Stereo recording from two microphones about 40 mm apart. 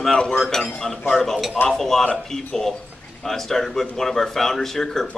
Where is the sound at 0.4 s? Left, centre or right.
Centre.